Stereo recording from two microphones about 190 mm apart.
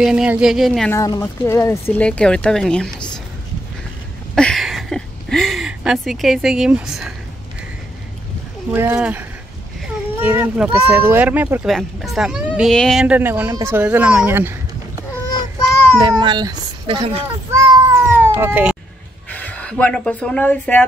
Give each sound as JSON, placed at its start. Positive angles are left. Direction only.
{"t": 0.0, "sound": "speech", "side_deg": -5}
{"t": 0.9, "sound": "speech", "side_deg": 15}
{"t": 4.4, "sound": "speech", "side_deg": 0}
{"t": 8.7, "sound": "speech", "side_deg": -10}
{"t": 10.2, "sound": "speech", "side_deg": -10}
{"t": 16.0, "sound": "a child's voice", "side_deg": -25}
{"t": 17.9, "sound": "cat", "side_deg": -10}
{"t": 19.3, "sound": "speech", "side_deg": 5}